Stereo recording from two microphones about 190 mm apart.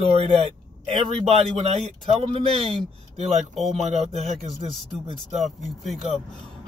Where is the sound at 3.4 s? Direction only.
Centre (ahead or behind).